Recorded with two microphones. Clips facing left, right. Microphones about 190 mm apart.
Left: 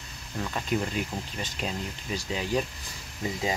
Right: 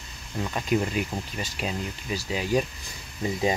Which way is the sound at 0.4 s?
15° right (ahead or behind).